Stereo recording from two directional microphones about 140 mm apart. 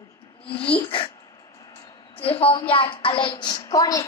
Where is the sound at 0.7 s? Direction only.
40° left (ahead or behind).